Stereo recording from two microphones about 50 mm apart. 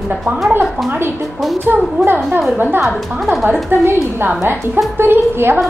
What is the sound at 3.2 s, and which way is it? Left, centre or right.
Speech, centre.